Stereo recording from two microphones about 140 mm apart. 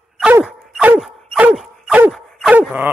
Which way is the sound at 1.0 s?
5° right (ahead or behind).